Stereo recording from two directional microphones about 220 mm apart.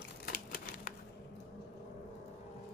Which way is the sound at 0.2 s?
40° left (ahead or behind).